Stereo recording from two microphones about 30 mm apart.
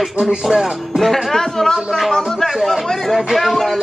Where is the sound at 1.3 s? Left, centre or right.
Centre.